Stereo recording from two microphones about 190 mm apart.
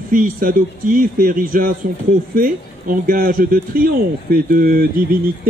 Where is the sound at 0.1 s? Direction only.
45° right (ahead or behind).